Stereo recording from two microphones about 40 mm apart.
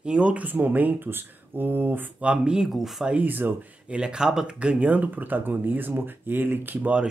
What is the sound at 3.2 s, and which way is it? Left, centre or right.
Speech, right.